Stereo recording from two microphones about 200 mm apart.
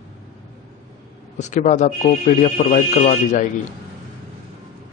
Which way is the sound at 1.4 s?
35° left (ahead or behind).